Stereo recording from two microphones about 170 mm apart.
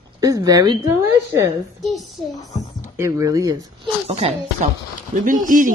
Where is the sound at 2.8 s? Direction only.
15° right (ahead or behind).